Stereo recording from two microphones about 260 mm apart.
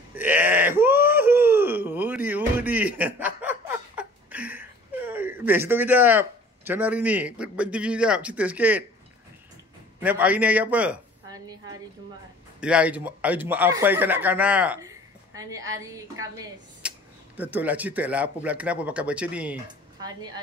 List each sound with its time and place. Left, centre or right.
0.1 s groan: centre
9.9 s a woman's voice: centre
20.0 s speech: centre